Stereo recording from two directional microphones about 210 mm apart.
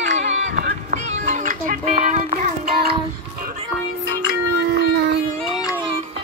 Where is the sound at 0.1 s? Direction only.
40° right (ahead or behind).